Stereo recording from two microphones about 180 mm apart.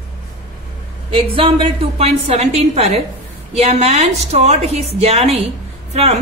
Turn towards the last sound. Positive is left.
turn(degrees=-35)  # may be behind; listen again after turning